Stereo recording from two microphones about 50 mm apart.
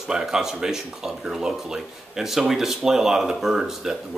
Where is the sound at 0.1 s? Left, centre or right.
Centre.